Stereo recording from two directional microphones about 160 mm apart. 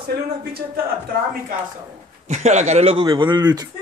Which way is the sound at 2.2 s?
45° right (ahead or behind).